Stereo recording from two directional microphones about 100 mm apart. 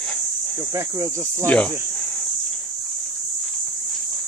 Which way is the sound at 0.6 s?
30° right (ahead or behind).